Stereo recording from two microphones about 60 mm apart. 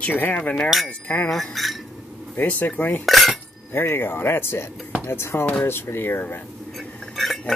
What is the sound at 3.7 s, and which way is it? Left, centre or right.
Speech, left.